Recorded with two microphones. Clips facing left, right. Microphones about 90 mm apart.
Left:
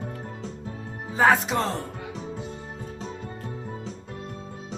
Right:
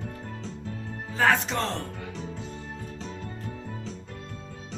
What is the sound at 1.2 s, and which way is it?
Speech, 10° left (ahead or behind).